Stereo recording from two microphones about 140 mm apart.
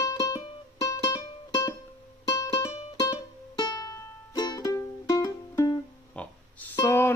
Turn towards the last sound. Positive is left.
turn(degrees=20)  # may be behind; listen again after turning